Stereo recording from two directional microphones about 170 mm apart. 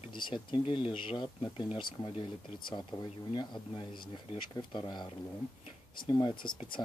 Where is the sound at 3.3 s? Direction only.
30° left (ahead or behind).